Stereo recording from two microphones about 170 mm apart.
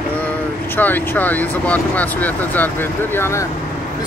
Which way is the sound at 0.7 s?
10° left (ahead or behind).